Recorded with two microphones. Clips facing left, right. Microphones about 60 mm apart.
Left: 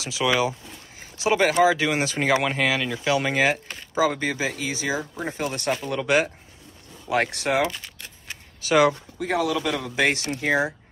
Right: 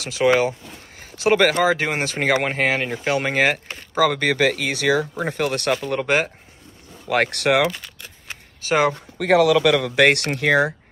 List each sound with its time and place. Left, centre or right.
0.0 s speech: right
7.1 s speech: right
8.5 s speech: right
9.2 s speech: right